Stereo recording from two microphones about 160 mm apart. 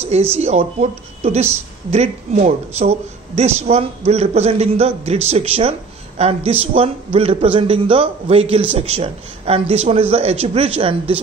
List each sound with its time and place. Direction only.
0.3 s speech: 40° right (ahead or behind)